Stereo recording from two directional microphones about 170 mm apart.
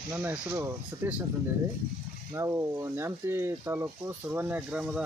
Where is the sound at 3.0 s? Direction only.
15° right (ahead or behind).